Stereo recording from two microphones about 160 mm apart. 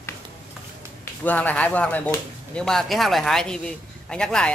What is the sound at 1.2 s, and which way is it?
Speech, 10° left (ahead or behind).